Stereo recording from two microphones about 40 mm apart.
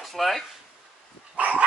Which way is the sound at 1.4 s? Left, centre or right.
Right.